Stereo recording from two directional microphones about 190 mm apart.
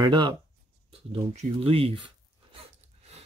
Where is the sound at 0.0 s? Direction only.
25° right (ahead or behind).